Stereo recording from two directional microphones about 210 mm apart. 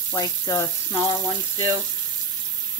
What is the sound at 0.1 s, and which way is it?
Speech, 15° left (ahead or behind).